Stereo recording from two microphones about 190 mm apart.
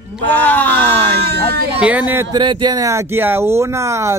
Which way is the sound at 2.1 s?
15° right (ahead or behind).